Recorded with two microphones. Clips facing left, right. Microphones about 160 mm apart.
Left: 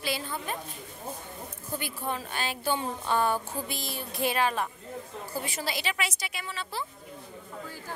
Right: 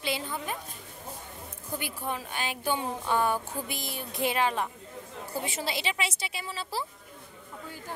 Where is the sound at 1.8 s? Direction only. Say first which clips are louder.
Left 1 dB; 10° right (ahead or behind); by 6.8 s 30° right (ahead or behind).